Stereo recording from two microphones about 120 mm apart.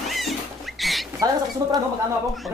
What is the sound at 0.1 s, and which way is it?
Rodents, centre (ahead or behind).